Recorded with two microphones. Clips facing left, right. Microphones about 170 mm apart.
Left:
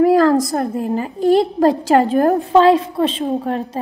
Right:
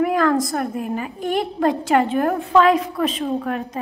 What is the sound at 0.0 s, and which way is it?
A woman's voice, 35° left (ahead or behind).